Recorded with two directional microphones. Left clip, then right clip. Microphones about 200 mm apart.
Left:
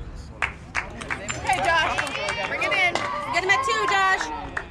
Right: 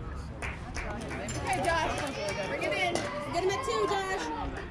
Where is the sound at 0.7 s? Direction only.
5° left (ahead or behind).